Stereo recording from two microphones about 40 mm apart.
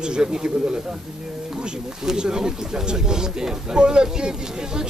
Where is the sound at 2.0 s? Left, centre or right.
Centre.